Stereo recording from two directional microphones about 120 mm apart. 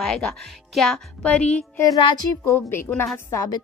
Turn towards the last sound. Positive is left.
turn(degrees=30)  # may be behind; listen again after turning